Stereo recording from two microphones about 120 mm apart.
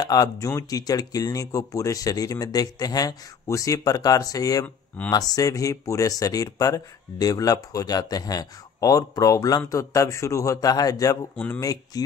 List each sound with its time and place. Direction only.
0.0 s speech: 30° left (ahead or behind)
11.3 s speech: 10° left (ahead or behind)
11.6 s speech: 30° left (ahead or behind)